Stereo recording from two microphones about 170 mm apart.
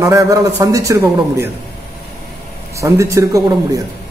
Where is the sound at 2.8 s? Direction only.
15° right (ahead or behind).